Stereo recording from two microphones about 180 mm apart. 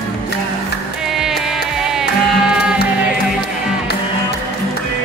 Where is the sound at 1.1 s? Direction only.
Centre (ahead or behind).